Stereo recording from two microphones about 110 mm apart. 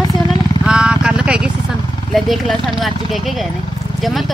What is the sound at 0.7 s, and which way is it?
Vehicle, 10° right (ahead or behind).